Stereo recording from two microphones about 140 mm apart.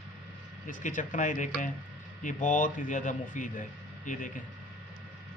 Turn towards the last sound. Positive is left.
turn(degrees=70)  # may be behind; listen again after turning